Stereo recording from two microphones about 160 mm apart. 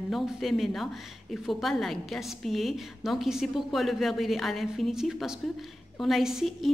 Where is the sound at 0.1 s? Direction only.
Centre (ahead or behind).